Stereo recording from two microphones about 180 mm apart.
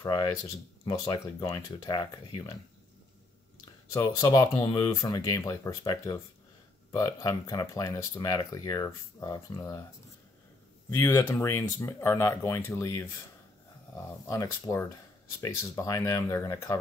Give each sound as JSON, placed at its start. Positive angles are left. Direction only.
{"t": 0.0, "sound": "speech", "side_deg": 20}
{"t": 3.9, "sound": "speech", "side_deg": 20}
{"t": 11.0, "sound": "speech", "side_deg": 15}
{"t": 14.2, "sound": "speech", "side_deg": 20}